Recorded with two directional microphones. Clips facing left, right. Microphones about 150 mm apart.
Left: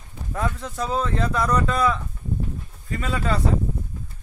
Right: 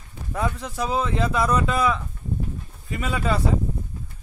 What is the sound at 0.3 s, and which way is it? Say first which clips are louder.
Speech: right 1 dB; 5° right (ahead or behind).